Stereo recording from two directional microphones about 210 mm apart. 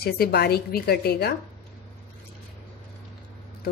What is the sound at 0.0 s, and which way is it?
A woman's voice, 50° left (ahead or behind).